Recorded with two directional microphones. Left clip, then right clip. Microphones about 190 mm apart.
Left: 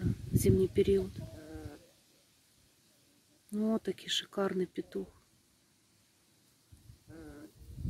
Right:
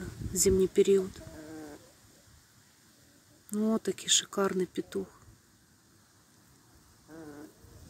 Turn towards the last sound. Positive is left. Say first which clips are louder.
# right 4 dB
turn(degrees=-30)  # may be behind; listen again after turning